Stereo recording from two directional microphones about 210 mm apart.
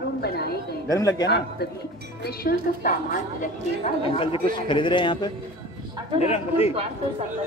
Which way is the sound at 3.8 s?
25° left (ahead or behind).